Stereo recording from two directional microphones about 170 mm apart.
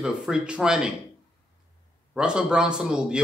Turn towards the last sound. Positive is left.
turn(degrees=-5)  # may be behind; listen again after turning